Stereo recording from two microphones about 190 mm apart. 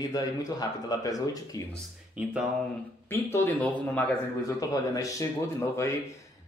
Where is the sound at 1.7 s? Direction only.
5° right (ahead or behind).